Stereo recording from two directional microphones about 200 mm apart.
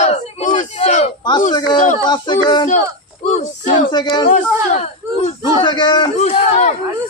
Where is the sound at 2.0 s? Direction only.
20° left (ahead or behind).